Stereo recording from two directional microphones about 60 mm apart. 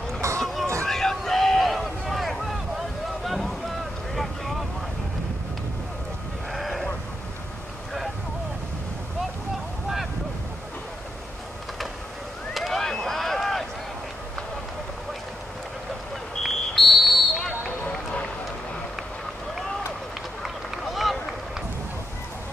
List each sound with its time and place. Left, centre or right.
0.2 s vehicle: right
0.8 s a sound: centre
3.3 s boat: centre
6.5 s sheep: centre
12.5 s vehicle: centre
16.4 s smoke detector: centre
20.4 s run: centre